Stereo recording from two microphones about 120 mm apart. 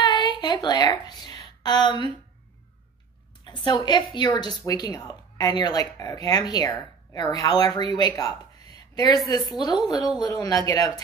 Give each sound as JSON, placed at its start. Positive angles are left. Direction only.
{"t": 0.0, "sound": "a sound", "side_deg": 35}
{"t": 1.6, "sound": "a woman's voice", "side_deg": 35}
{"t": 3.4, "sound": "a woman's voice", "side_deg": 40}